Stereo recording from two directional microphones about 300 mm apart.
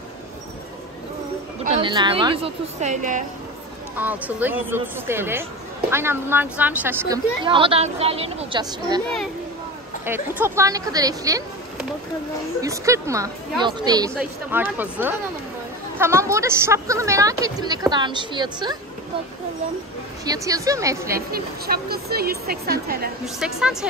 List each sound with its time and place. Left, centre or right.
1.6 s a woman's voice: centre
3.9 s speech: centre
10.0 s speech: centre
12.6 s speech: centre
20.2 s speech: centre
21.3 s a woman's voice: right
23.2 s a woman's voice: centre